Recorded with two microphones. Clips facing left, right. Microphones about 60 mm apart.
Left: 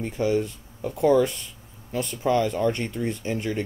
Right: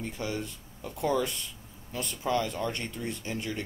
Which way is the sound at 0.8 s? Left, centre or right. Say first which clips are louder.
Left 9 dB; left.